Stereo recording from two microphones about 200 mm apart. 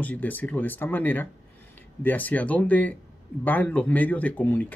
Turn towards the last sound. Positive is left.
turn(degrees=10)  # may be behind; listen again after turning